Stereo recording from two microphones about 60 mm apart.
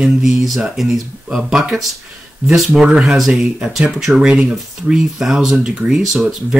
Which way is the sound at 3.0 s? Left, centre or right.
Centre.